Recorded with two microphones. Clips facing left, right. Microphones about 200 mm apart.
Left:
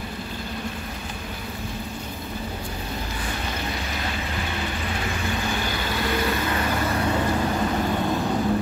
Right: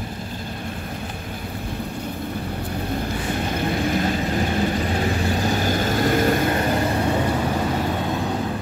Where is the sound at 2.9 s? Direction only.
50° right (ahead or behind); by 6.8 s 35° right (ahead or behind).